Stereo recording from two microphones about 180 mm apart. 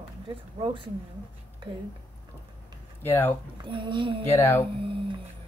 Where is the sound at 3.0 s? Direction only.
10° left (ahead or behind).